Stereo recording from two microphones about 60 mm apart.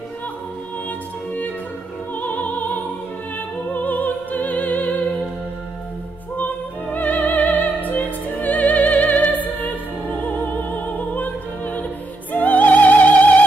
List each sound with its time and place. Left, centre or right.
2.1 s music: left
3.7 s opera: left
6.3 s opera: left